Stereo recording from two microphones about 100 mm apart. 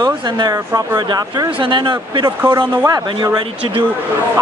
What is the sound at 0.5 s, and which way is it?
Speech, 40° right (ahead or behind).